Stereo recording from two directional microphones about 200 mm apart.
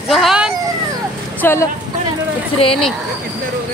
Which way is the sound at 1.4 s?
10° left (ahead or behind).